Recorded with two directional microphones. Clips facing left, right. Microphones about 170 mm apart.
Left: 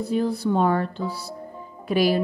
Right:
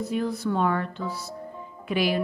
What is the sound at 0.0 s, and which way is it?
A woman's voice, 30° left (ahead or behind).